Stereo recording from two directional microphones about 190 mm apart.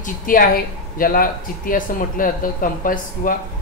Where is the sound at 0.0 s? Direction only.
50° left (ahead or behind).